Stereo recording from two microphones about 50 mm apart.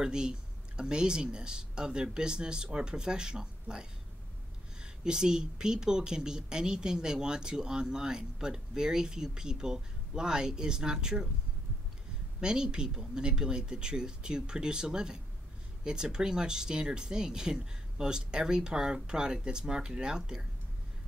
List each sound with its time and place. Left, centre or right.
0.0 s speech: centre
12.4 s speech: centre